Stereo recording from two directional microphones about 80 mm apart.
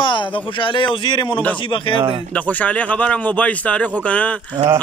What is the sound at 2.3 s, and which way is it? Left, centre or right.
A man's voice, centre.